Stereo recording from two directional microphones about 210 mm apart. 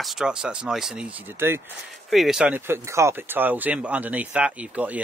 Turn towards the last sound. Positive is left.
turn(degrees=-5)  # may be behind; listen again after turning